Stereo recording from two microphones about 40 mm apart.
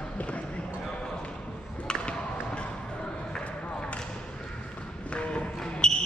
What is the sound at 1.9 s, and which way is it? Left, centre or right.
Music, left.